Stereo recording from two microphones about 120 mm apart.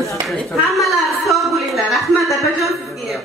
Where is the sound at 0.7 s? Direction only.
Centre (ahead or behind).